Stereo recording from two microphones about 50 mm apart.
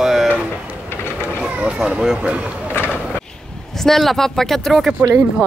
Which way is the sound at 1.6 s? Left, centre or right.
Centre.